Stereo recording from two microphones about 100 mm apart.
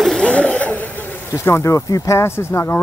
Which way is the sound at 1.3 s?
25° left (ahead or behind).